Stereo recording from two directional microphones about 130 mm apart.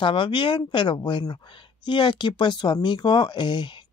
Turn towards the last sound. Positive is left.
turn(degrees=35)  # may be behind; listen again after turning